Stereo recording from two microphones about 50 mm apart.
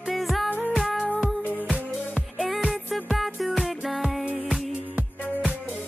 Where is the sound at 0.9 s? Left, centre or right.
Centre.